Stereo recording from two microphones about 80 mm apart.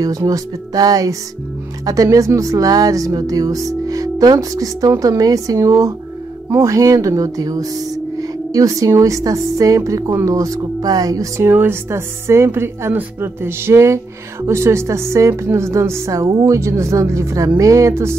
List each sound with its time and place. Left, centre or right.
0.0 s speech: right
11.4 s speech: right